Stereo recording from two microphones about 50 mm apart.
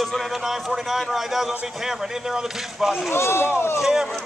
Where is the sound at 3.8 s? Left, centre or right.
Centre.